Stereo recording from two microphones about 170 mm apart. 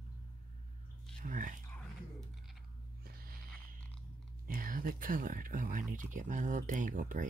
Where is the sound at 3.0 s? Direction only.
60° right (ahead or behind).